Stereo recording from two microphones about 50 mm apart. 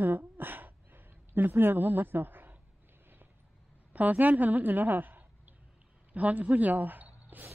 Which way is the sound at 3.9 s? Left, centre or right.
Right.